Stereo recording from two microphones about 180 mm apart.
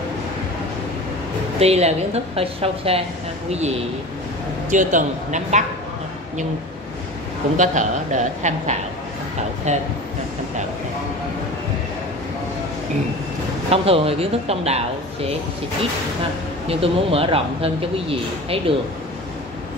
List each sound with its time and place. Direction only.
1.6 s a woman's voice: 35° right (ahead or behind)
7.5 s a woman's voice: 45° right (ahead or behind)
13.7 s a woman's voice: 30° right (ahead or behind)
16.6 s a woman's voice: 30° right (ahead or behind)